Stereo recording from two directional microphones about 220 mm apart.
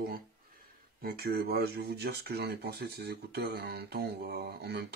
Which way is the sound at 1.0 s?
45° right (ahead or behind).